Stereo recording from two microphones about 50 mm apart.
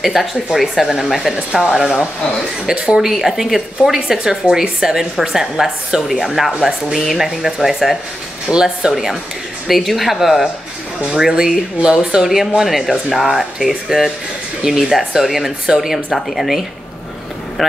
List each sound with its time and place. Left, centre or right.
0.0 s a woman's voice: centre
3.0 s a woman's voice: centre
11.0 s a woman's voice: centre